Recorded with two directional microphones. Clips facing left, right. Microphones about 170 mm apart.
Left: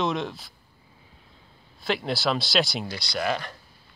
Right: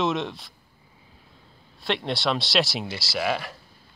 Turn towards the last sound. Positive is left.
turn(degrees=-5)  # may be behind; listen again after turning